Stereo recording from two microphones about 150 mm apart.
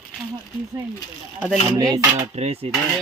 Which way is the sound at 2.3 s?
45° right (ahead or behind).